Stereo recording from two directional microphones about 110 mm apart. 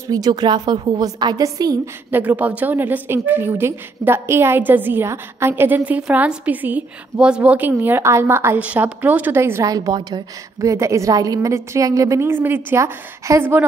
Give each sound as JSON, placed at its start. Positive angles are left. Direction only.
{"t": 0.1, "sound": "a woman's voice", "side_deg": -40}
{"t": 2.0, "sound": "a woman's voice", "side_deg": -15}
{"t": 8.5, "sound": "a woman's voice", "side_deg": -10}